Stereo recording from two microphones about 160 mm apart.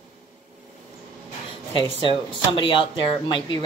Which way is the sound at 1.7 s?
30° left (ahead or behind).